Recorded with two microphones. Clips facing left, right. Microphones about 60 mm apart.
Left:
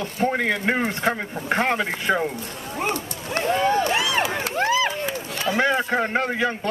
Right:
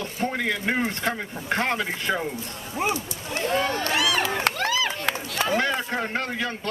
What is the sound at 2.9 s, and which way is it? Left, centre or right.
Speech, left.